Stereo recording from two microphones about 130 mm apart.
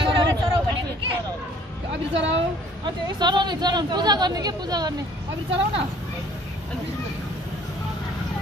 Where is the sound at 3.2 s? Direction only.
35° right (ahead or behind).